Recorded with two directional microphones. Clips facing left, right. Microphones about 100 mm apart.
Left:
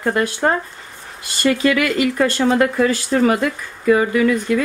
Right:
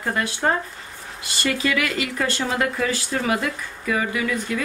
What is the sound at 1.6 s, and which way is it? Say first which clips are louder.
Speech: left 7 dB; 45° left (ahead or behind).